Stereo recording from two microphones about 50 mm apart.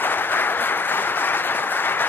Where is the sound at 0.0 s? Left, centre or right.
Left.